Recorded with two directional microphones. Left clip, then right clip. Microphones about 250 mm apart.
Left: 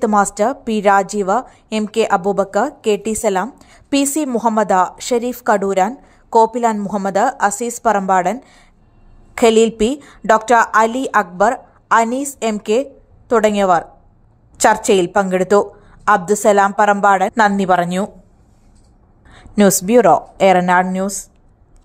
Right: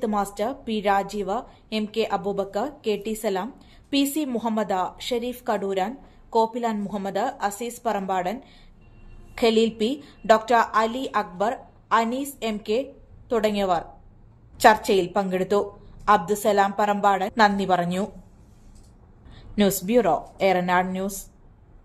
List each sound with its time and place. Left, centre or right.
0.0 s a woman's voice: left
19.3 s a woman's voice: left